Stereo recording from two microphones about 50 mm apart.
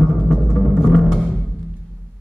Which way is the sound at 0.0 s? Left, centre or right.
Centre.